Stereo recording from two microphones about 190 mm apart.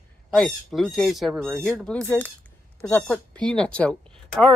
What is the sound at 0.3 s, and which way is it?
Speech, centre (ahead or behind).